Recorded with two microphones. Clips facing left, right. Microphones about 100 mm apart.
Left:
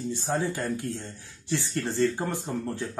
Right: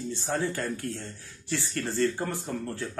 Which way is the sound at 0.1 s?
20° left (ahead or behind).